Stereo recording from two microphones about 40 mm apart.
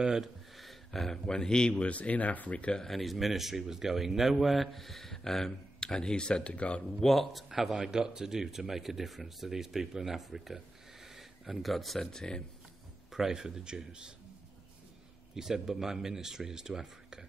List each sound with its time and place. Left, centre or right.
0.2 s speech: centre
1.7 s speech: left
2.9 s speech: centre; by 6.8 s left
7.0 s speech: centre
7.3 s speech: centre
13.1 s speech: centre
15.3 s speech: centre